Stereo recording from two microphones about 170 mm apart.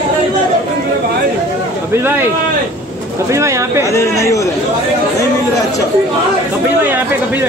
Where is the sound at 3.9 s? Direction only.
15° left (ahead or behind).